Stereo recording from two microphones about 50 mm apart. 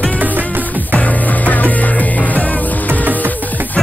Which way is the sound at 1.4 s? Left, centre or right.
Left.